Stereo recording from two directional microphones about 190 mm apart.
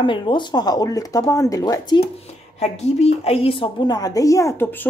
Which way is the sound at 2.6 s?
35° left (ahead or behind).